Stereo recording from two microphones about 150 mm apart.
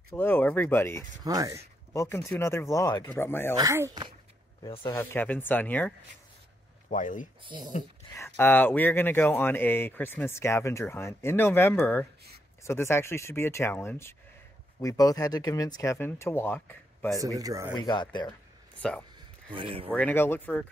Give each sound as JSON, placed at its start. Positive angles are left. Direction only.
{"t": 0.1, "sound": "speech", "side_deg": 15}
{"t": 1.2, "sound": "speech", "side_deg": -25}
{"t": 2.0, "sound": "speech", "side_deg": 15}
{"t": 3.5, "sound": "speech", "side_deg": -20}
{"t": 4.9, "sound": "speech", "side_deg": 10}
{"t": 6.9, "sound": "speech", "side_deg": 60}
{"t": 7.4, "sound": "speech", "side_deg": -30}
{"t": 8.1, "sound": "speech", "side_deg": 15}
{"t": 17.2, "sound": "speech", "side_deg": -25}
{"t": 17.7, "sound": "speech", "side_deg": 30}
{"t": 18.8, "sound": "speech", "side_deg": 10}
{"t": 19.1, "sound": "a sound", "side_deg": -35}
{"t": 19.9, "sound": "speech", "side_deg": 10}